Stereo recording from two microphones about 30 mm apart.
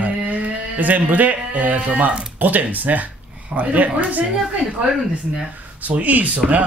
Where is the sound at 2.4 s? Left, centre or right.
Right.